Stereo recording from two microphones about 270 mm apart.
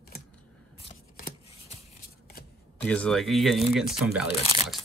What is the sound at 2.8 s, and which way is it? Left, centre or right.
Speech, centre.